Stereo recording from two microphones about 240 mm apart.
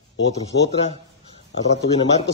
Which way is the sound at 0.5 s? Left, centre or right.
Left.